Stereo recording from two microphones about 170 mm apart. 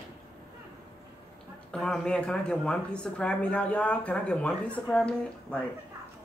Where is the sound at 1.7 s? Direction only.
5° left (ahead or behind).